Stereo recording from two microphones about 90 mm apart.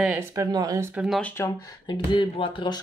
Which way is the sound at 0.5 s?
45° right (ahead or behind).